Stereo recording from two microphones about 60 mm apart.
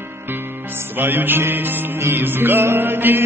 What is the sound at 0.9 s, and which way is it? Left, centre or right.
Mantra, right.